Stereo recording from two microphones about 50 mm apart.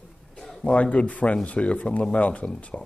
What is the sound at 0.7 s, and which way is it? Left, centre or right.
Speech, left.